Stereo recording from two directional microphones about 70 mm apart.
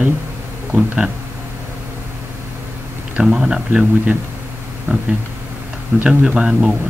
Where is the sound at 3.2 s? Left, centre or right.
Centre.